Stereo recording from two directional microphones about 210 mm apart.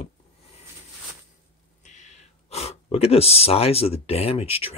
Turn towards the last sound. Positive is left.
turn(degrees=25)  # may be behind; listen again after turning